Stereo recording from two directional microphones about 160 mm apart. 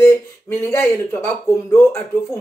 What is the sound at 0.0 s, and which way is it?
Speech, 15° left (ahead or behind).